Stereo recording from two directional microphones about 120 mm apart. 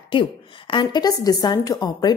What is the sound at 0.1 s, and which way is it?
A woman's voice, 45° left (ahead or behind).